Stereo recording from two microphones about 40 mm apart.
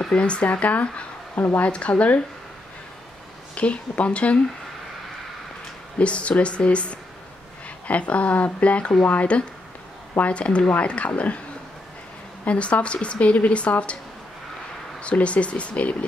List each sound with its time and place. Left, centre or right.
0.1 s a woman's voice: left
3.5 s a woman's voice: left
5.9 s a woman's voice: left
12.4 s a woman's voice: left
15.0 s a woman's voice: left